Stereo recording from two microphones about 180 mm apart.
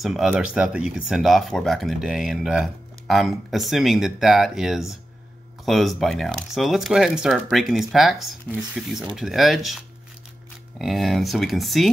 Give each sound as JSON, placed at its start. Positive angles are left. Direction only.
{"t": 0.0, "sound": "speech", "side_deg": 0}